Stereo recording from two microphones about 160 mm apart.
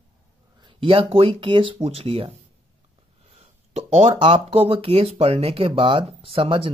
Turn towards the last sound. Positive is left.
turn(degrees=-35)  # may be behind; listen again after turning